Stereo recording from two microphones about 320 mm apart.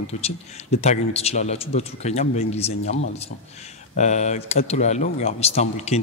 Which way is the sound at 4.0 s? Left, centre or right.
Left.